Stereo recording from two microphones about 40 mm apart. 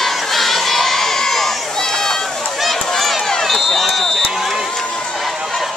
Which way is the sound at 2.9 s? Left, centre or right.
Centre.